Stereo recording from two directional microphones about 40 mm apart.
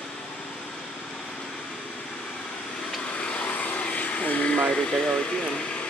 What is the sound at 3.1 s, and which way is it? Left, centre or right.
Vehicle, left.